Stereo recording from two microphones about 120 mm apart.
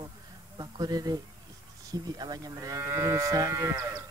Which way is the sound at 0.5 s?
35° right (ahead or behind).